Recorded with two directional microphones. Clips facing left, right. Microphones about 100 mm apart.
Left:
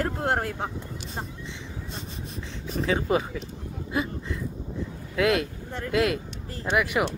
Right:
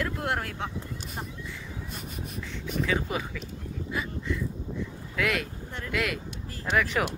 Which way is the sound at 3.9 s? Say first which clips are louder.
Left 4 dB; 30° left (ahead or behind).